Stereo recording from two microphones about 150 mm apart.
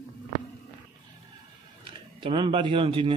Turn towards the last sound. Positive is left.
turn(degrees=-35)  # may be behind; listen again after turning